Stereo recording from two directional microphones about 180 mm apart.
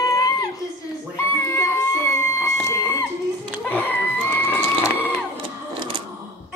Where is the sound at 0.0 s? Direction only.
20° left (ahead or behind).